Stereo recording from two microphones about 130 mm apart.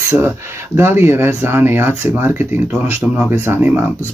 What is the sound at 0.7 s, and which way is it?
Speech, 20° right (ahead or behind).